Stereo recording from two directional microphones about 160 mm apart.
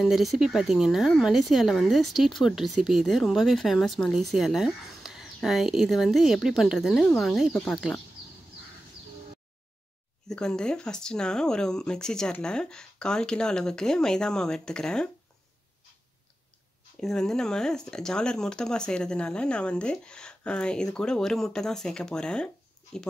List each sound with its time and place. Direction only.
0.0 s speech: centre (ahead or behind)
10.2 s speech: 5° left (ahead or behind)
17.0 s speech: 5° left (ahead or behind)